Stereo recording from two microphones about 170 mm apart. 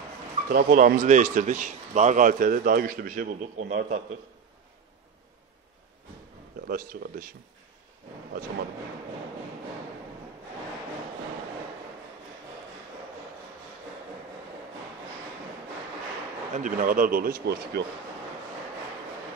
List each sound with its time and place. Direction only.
0.5 s a man's voice: 55° right (ahead or behind)
6.7 s speech: 55° right (ahead or behind)
16.5 s speech: 50° right (ahead or behind); by 17.8 s 65° right (ahead or behind)